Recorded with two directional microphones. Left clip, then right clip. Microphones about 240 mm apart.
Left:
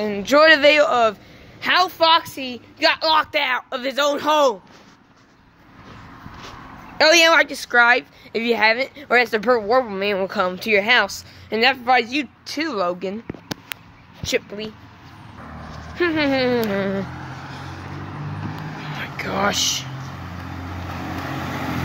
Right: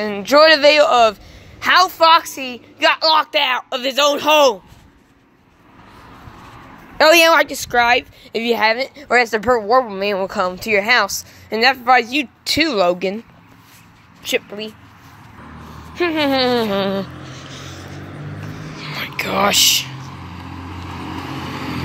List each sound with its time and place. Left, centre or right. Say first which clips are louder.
0.0 s speech: right 3 dB; centre
7.0 s speech: right 3 dB; centre
14.2 s speech: right 2 dB; centre
16.0 s speech: right 3 dB; centre
17.4 s vehicle: even; centre
18.8 s a sound: right 5 dB; centre
19.1 s speech: right 6 dB; centre
19.9 s vehicle: right 1 dB; centre